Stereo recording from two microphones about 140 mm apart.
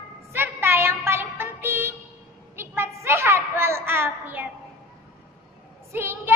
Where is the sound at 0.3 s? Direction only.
15° right (ahead or behind).